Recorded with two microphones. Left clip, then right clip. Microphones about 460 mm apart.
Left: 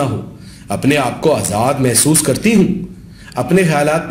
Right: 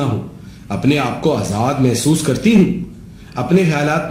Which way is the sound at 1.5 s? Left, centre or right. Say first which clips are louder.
Left 3 dB; centre.